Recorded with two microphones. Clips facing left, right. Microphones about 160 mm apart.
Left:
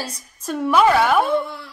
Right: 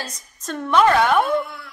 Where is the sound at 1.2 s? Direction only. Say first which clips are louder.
Left 1 dB; 30° left (ahead or behind).